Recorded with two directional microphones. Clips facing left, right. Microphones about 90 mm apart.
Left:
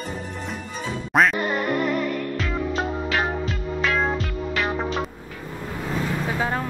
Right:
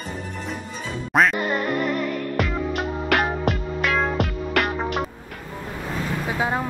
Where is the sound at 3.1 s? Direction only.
65° right (ahead or behind).